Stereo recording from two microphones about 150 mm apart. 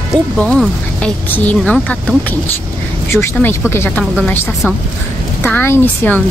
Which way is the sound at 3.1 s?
15° left (ahead or behind).